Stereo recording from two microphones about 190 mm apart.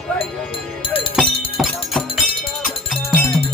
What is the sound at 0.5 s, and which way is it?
Music, 30° left (ahead or behind).